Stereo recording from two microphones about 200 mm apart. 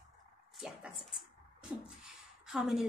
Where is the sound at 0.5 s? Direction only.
Centre (ahead or behind).